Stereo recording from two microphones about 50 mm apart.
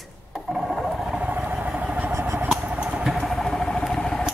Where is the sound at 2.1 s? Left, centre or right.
Right.